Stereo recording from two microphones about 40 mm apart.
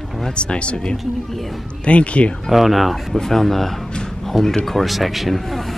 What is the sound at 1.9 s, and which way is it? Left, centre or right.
Speech, left.